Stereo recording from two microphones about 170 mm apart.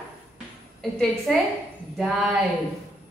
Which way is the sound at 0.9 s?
Centre (ahead or behind).